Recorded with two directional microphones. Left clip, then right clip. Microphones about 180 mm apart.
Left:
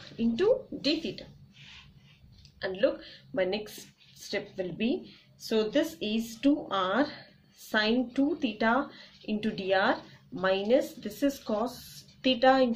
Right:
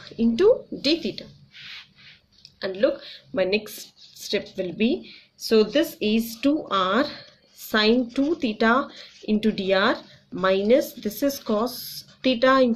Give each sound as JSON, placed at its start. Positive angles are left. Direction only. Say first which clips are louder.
{"t": 0.2, "sound": "speech", "louder": "right 7 dB", "side_deg": -30}
{"t": 2.6, "sound": "speech", "louder": "right 5 dB", "side_deg": -30}